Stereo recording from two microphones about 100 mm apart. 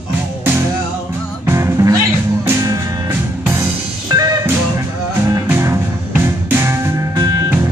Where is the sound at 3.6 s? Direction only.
35° right (ahead or behind).